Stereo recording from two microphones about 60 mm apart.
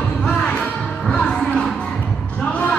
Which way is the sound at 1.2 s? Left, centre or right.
Centre.